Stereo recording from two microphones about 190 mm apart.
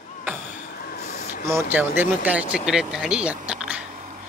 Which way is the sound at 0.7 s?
50° left (ahead or behind).